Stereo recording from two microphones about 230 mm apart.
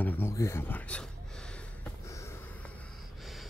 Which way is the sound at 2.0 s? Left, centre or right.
Centre.